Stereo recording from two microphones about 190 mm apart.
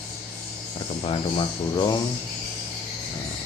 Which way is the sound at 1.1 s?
25° left (ahead or behind).